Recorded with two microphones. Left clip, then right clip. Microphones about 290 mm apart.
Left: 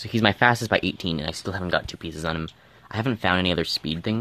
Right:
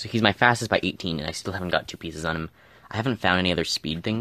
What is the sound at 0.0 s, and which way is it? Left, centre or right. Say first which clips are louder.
Speech: even; centre.